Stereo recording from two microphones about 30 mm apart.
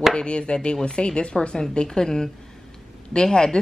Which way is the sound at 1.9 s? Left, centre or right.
Left.